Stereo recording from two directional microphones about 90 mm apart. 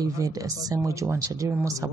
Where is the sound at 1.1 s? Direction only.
30° right (ahead or behind).